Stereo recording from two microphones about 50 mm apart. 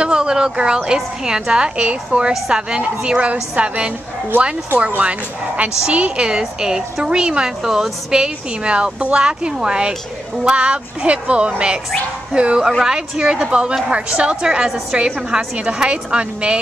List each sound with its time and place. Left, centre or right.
0.0 s a sound: centre
0.8 s a woman's voice: centre
5.8 s a woman's voice: right